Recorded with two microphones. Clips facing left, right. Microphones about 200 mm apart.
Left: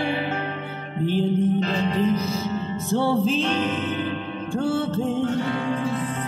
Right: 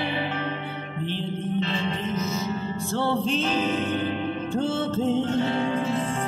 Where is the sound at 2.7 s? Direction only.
15° left (ahead or behind).